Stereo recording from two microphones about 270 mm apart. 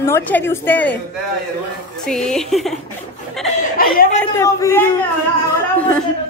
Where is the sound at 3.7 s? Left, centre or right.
Left.